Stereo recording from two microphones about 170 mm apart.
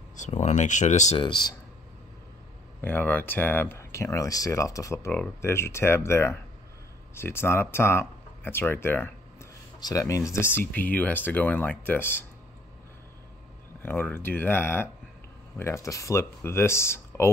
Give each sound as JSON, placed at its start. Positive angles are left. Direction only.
{"t": 0.1, "sound": "speech", "side_deg": 45}
{"t": 2.8, "sound": "speech", "side_deg": 10}
{"t": 13.8, "sound": "speech", "side_deg": 10}